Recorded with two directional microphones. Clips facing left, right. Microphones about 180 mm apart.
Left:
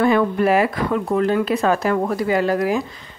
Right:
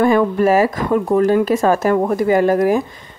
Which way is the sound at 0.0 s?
45° right (ahead or behind).